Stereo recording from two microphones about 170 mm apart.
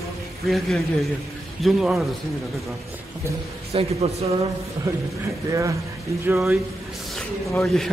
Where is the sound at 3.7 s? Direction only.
35° right (ahead or behind).